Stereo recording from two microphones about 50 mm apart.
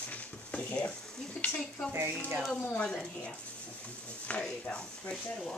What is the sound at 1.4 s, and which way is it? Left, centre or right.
Speech, left.